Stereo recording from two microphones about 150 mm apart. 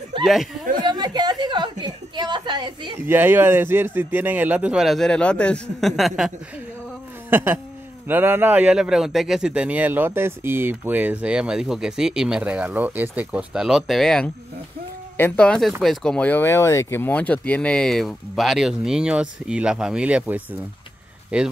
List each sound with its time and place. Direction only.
0.2 s speech: centre (ahead or behind)
0.8 s a woman's voice: 30° right (ahead or behind)
3.1 s a man's voice: 15° right (ahead or behind)
7.2 s a sound: 15° right (ahead or behind)
8.1 s a man's voice: 15° right (ahead or behind)